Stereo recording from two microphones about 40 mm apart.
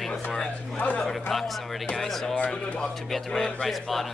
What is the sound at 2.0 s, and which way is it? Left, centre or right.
A man's voice, centre.